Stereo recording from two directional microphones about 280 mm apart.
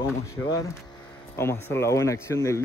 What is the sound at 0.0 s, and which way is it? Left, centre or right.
Speech, centre.